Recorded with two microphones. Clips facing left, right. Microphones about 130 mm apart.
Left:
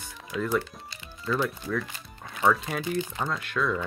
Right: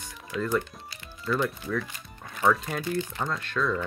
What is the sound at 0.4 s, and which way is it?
Speech, 5° left (ahead or behind).